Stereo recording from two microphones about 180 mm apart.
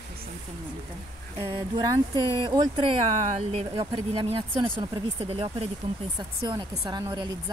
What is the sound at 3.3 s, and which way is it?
Speech, 35° right (ahead or behind).